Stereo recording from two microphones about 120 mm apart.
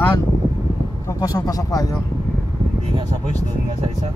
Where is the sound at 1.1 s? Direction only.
30° left (ahead or behind).